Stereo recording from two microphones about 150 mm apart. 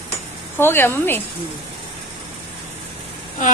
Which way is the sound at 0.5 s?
15° left (ahead or behind).